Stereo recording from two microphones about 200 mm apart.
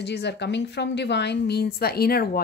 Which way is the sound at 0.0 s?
60° left (ahead or behind).